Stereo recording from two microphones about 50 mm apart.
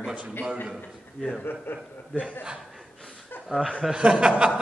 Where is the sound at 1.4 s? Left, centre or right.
Left.